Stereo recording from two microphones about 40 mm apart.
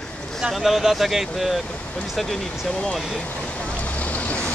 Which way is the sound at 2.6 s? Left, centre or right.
Centre.